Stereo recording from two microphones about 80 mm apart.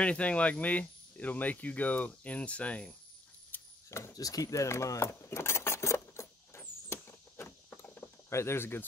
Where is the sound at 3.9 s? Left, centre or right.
Left.